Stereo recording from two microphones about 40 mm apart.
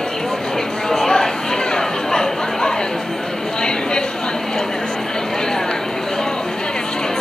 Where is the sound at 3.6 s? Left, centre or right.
Left.